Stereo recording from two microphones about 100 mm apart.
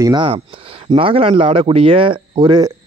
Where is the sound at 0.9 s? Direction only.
65° right (ahead or behind).